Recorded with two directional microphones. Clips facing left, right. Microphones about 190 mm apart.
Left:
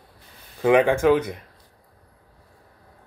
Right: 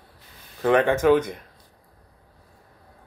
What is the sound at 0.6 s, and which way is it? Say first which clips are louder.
Speech: left 1 dB; 10° left (ahead or behind).